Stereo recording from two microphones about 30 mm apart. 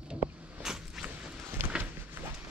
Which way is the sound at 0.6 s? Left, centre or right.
Centre.